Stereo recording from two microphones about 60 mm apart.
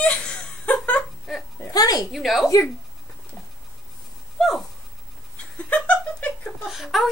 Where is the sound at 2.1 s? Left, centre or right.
Centre.